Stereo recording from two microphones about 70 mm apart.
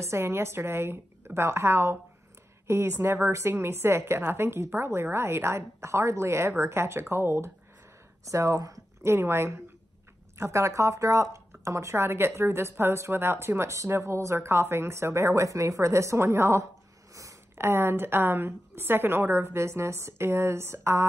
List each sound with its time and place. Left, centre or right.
0.0 s speech: right
8.3 s speech: right
9.0 s speech: right
17.1 s a sound: right
17.6 s speech: right